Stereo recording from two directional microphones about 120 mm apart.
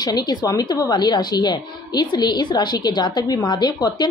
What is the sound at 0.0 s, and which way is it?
A woman's voice, 35° left (ahead or behind).